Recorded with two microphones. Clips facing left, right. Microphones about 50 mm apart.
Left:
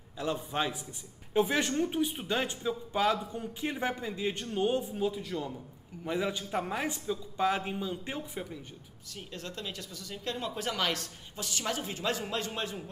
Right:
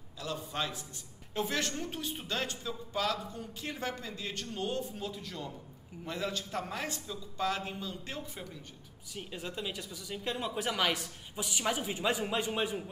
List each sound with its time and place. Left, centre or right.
0.2 s a man's voice: left
9.1 s speech: centre